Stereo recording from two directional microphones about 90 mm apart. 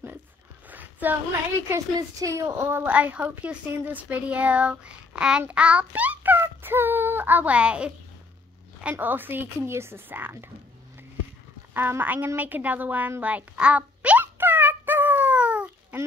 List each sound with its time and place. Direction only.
0.7 s a sound: 20° right (ahead or behind)
2.1 s speech: 40° right (ahead or behind)
2.4 s a woman's voice: 25° right (ahead or behind)
9.0 s a woman's voice: 20° right (ahead or behind)
11.7 s a woman's voice: 20° right (ahead or behind)
13.2 s a sound: 15° right (ahead or behind)